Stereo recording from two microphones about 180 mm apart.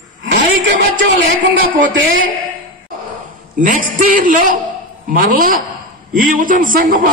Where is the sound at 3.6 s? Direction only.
50° right (ahead or behind).